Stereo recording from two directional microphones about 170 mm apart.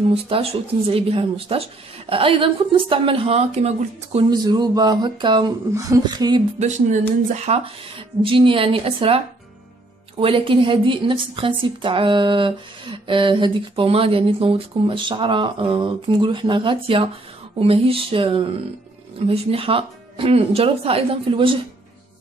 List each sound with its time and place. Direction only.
0.1 s speech: 35° right (ahead or behind)
4.3 s a woman's voice: 25° right (ahead or behind)
7.5 s a woman's voice: 40° right (ahead or behind)